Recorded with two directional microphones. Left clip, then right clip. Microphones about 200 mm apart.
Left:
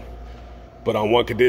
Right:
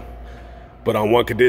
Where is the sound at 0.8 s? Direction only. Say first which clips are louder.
Right 2 dB; 15° right (ahead or behind).